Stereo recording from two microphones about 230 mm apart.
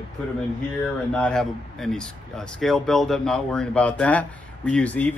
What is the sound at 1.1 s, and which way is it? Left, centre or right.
Speech, centre.